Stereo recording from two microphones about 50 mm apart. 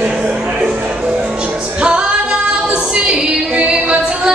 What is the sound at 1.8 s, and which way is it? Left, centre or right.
Female singing, centre.